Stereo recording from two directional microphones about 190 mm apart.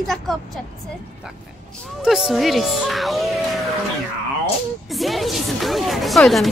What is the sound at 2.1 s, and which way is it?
Speech, centre (ahead or behind).